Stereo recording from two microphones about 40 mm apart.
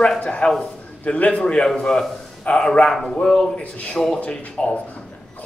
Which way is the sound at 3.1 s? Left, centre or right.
Left.